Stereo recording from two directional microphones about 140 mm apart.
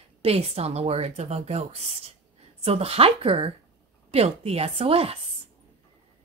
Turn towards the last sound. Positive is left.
turn(degrees=-45)  # may be behind; listen again after turning